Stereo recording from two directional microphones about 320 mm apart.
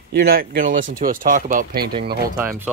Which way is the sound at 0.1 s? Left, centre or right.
Right.